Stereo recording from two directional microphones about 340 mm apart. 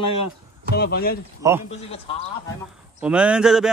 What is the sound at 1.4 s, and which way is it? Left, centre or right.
Speech, centre.